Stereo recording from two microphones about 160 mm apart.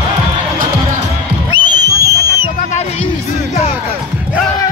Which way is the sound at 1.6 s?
25° right (ahead or behind).